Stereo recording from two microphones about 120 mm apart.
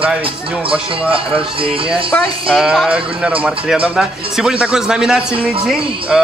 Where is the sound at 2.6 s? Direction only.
5° right (ahead or behind).